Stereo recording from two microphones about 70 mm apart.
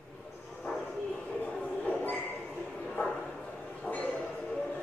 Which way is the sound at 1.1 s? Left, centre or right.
Centre.